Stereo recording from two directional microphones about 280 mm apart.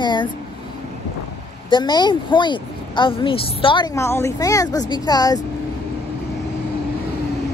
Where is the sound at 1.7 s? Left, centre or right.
Centre.